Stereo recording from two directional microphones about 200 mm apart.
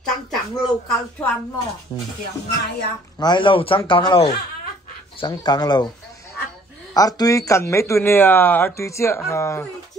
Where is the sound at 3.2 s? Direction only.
25° left (ahead or behind).